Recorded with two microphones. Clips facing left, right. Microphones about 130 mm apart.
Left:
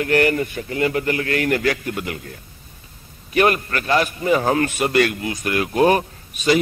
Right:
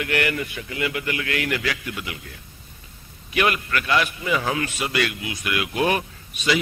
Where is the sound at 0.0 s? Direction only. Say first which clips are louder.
Left 7 dB; 40° left (ahead or behind).